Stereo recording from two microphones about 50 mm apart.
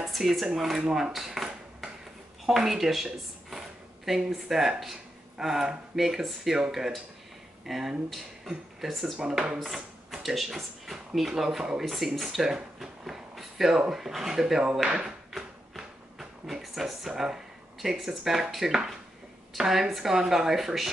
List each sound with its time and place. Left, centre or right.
0.0 s a sound: centre
0.6 s dishes: centre
2.4 s speech: centre
14.7 s speech: right
15.0 s a sound: centre
17.1 s speech: centre